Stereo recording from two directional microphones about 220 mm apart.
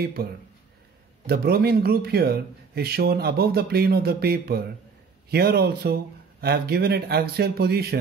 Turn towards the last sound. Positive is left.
turn(degrees=-45)  # may be behind; listen again after turning